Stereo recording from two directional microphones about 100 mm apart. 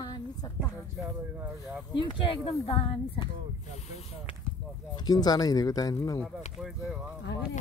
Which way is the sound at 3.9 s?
90° left.